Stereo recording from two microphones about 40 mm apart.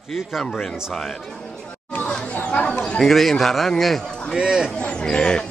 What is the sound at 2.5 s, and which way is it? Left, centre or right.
Chatter, left.